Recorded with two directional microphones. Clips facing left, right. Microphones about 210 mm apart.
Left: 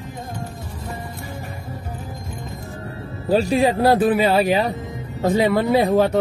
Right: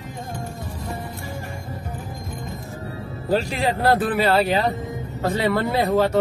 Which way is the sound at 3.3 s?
15° left (ahead or behind).